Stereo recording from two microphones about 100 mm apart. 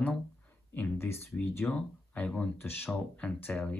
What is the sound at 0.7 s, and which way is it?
Speech, 20° left (ahead or behind).